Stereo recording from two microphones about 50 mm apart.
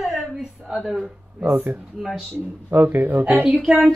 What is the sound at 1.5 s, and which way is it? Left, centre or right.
Speech, right.